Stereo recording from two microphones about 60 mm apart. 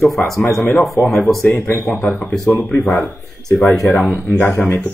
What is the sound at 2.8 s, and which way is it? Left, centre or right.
Speech, centre.